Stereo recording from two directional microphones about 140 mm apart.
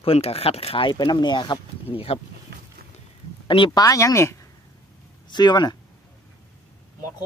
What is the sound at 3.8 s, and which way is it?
Speech, 25° left (ahead or behind).